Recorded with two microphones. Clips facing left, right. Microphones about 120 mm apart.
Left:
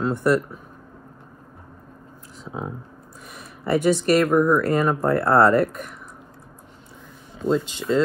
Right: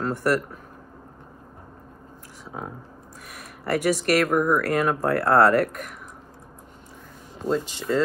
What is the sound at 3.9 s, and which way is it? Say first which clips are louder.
Speech: left 3 dB; 10° right (ahead or behind).